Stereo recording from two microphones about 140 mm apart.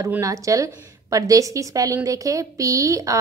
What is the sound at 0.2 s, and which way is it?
A woman's voice, 25° right (ahead or behind).